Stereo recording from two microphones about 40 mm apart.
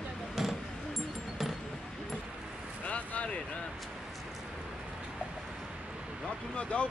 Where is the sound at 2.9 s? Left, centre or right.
Left.